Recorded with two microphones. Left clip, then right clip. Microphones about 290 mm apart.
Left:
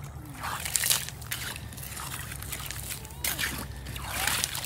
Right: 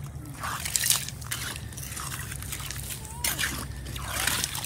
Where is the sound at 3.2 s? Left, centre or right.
Centre.